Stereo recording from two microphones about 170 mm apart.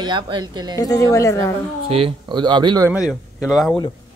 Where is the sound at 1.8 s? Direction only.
35° right (ahead or behind).